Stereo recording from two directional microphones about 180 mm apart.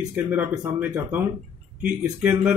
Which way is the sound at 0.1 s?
10° right (ahead or behind).